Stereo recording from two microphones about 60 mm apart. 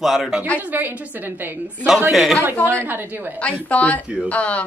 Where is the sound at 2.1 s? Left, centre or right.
Centre.